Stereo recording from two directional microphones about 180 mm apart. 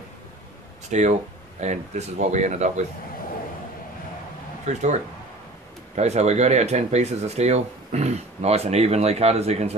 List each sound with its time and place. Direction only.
0.8 s speech: 40° right (ahead or behind)
4.7 s speech: 40° right (ahead or behind)
5.9 s speech: 40° right (ahead or behind)